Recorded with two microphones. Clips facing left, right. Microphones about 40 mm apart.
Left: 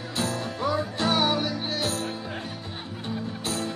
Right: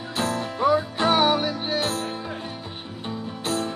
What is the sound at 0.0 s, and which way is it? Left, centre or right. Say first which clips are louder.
Music: right 3 dB; centre.